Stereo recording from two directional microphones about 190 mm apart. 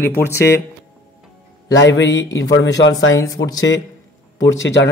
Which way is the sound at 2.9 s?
15° left (ahead or behind).